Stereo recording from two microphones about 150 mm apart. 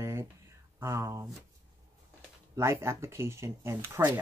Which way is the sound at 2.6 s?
20° right (ahead or behind).